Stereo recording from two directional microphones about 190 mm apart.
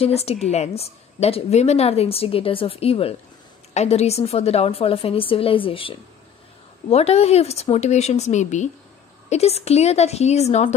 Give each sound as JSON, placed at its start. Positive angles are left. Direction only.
{"t": 0.0, "sound": "a woman's voice", "side_deg": 30}